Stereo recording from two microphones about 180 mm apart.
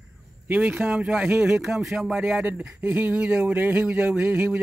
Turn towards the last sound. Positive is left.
turn(degrees=-10)  # may be behind; listen again after turning